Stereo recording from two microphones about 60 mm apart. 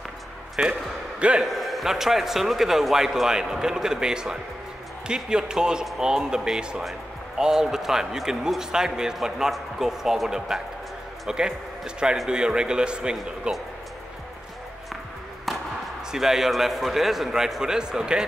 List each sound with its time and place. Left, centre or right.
0.6 s speech: centre
1.4 s a man's voice: centre
16.1 s a man's voice: centre